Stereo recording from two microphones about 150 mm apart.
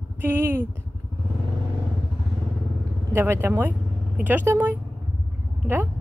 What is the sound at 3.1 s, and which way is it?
A woman's voice, 15° right (ahead or behind).